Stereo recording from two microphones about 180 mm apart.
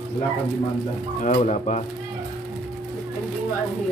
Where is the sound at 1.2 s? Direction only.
40° left (ahead or behind).